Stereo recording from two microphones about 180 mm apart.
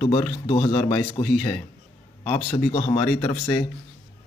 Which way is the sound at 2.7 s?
35° left (ahead or behind).